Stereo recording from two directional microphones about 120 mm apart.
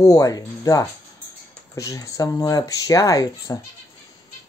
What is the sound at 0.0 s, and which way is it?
Speech, 30° left (ahead or behind).